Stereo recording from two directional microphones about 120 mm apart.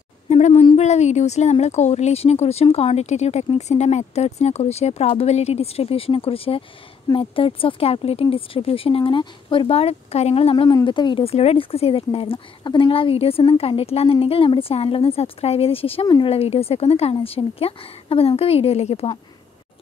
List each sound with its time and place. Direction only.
0.3 s a sound: 60° left (ahead or behind)
0.7 s speech: 70° left (ahead or behind); by 10.7 s 50° left (ahead or behind)
10.7 s speech: 35° left (ahead or behind)
11.2 s speech: 55° left (ahead or behind)